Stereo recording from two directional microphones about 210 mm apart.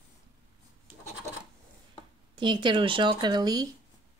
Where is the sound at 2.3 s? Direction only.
20° right (ahead or behind).